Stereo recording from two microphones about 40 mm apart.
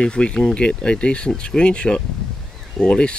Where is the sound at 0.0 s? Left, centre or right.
Left.